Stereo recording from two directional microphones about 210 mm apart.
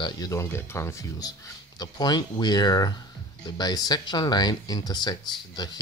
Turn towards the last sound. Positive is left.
turn(degrees=20)  # may be behind; listen again after turning